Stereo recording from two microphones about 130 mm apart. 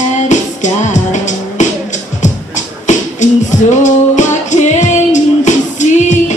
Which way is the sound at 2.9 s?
65° left (ahead or behind).